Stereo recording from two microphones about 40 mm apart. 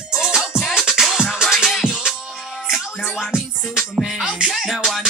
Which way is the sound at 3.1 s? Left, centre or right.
Centre.